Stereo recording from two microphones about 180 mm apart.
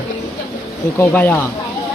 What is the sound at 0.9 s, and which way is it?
Speech, 15° left (ahead or behind).